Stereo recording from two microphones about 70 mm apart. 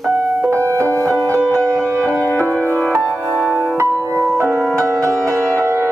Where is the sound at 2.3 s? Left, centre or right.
Left.